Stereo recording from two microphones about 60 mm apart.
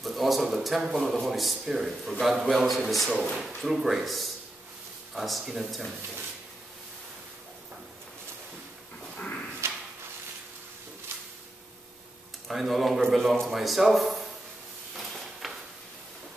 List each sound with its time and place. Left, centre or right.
0.0 s speech: centre
9.1 s dog: left
9.6 s drawer open or close: right
11.1 s a sound: right
12.4 s speech: centre
15.0 s drawer open or close: centre